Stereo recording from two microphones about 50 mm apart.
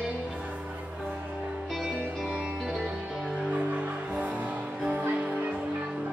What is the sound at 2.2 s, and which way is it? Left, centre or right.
Music, centre.